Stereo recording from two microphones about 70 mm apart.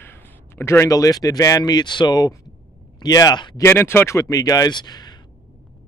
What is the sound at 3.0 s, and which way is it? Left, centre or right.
Speech, left.